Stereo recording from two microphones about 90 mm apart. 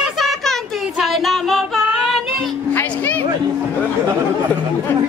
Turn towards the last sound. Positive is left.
turn(degrees=20)  # may be behind; listen again after turning